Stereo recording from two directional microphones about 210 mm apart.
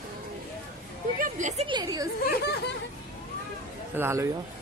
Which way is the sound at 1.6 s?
20° right (ahead or behind).